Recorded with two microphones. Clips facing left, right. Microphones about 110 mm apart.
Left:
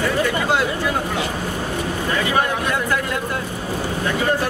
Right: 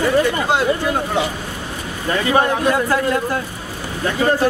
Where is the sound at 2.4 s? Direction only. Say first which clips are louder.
Right 4 dB; 30° right (ahead or behind).